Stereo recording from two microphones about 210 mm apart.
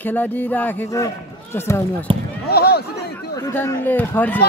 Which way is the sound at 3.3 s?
15° left (ahead or behind).